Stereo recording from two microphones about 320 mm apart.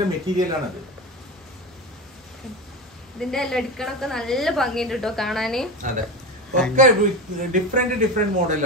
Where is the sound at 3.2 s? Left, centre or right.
Centre.